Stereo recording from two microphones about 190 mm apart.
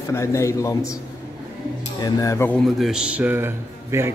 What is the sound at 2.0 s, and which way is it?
Speech, 15° left (ahead or behind).